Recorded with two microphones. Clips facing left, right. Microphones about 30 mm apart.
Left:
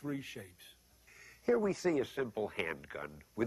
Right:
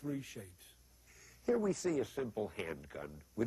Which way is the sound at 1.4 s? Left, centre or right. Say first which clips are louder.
Left 3 dB; left.